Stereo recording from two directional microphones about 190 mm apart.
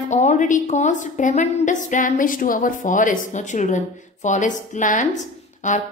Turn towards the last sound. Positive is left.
turn(degrees=40)  # may be behind; listen again after turning